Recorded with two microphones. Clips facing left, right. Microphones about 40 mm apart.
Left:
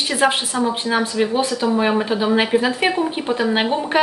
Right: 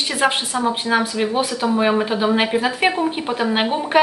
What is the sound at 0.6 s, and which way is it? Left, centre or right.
Speech, centre.